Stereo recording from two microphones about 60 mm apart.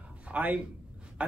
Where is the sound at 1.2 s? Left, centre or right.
Right.